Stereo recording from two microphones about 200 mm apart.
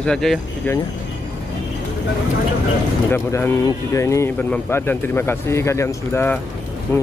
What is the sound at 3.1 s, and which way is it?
Speech, 10° left (ahead or behind).